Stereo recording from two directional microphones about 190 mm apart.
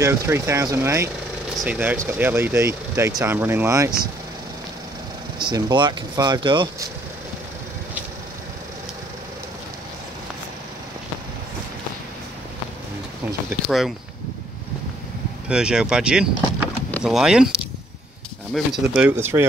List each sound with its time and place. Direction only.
0.0 s speech: 15° right (ahead or behind)
5.4 s speech: 25° right (ahead or behind)
13.7 s speech: centre (ahead or behind)
15.4 s speech: 5° right (ahead or behind)